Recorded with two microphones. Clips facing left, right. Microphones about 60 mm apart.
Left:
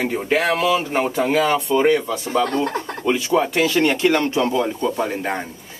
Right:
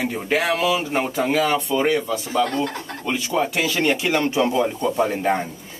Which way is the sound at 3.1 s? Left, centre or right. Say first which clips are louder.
Left 4 dB; centre.